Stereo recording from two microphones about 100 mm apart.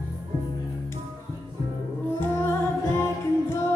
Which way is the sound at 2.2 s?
25° left (ahead or behind).